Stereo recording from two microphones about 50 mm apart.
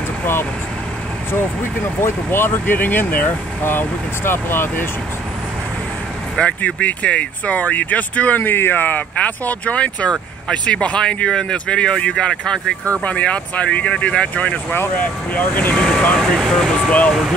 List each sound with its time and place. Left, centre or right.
1.8 s speech: left
3.6 s speech: left
6.6 s speech: left
9.1 s speech: left
13.0 s speech: left
15.7 s speech: centre
16.4 s speech: centre